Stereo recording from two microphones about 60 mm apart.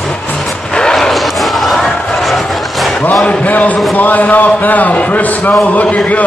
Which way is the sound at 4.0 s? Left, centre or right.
Left.